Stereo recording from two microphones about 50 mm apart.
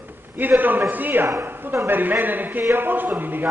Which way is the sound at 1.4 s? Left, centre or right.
Right.